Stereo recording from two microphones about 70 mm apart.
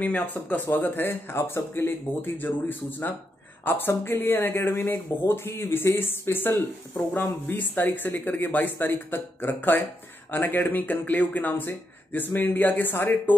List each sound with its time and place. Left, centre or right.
0.0 s speech: left